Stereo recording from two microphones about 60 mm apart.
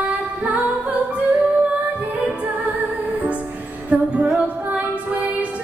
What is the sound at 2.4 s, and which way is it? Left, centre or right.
Music, right.